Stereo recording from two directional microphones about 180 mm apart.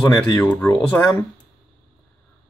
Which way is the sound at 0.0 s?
5° left (ahead or behind).